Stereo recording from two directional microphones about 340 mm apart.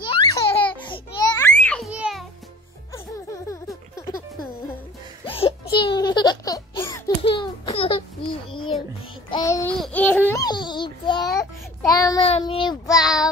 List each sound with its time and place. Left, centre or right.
0.0 s baby laughter: centre
2.9 s music: centre
5.2 s music: centre
5.8 s a sound: centre
9.3 s babbling: centre
11.2 s child singing: centre
13.0 s child singing: centre